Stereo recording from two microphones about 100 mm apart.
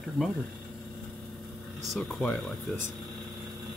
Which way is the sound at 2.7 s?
15° left (ahead or behind).